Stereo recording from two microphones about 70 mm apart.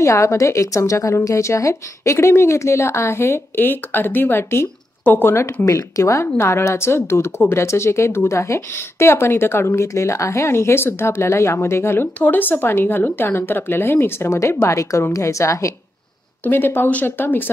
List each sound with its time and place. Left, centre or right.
0.0 s speech: left
12.2 s a woman's voice: left
16.4 s speech: left